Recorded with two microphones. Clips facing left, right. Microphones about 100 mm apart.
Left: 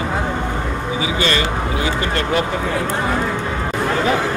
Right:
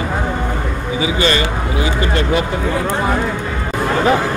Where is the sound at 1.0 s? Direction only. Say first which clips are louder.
Right 4 dB; 25° right (ahead or behind).